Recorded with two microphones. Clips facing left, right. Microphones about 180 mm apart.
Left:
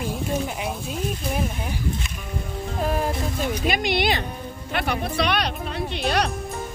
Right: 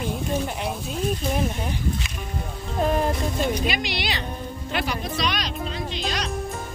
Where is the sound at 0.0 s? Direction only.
5° left (ahead or behind).